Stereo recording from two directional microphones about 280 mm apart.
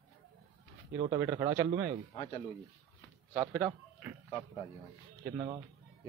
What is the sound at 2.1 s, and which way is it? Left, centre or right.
Speech, centre.